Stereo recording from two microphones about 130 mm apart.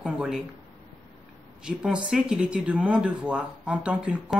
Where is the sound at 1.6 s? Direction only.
10° right (ahead or behind).